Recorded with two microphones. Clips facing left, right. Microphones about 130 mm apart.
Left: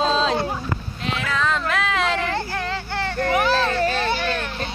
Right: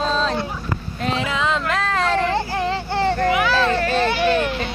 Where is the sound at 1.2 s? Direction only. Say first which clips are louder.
Left 1 dB; 20° right (ahead or behind).